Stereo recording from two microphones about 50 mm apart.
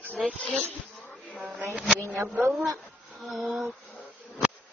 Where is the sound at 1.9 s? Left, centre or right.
Right.